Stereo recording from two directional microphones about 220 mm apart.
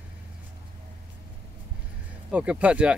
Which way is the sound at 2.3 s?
5° right (ahead or behind).